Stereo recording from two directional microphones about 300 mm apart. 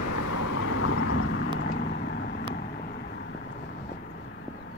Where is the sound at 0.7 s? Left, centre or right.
Left.